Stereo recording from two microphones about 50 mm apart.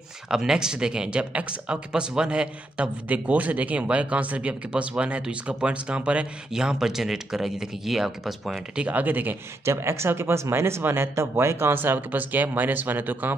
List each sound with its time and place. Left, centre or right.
0.3 s a man's voice: centre
6.5 s speech: centre
8.7 s speech: right
9.7 s speech: right